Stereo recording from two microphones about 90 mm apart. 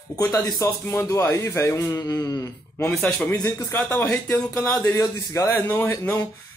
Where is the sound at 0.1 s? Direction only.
45° left (ahead or behind).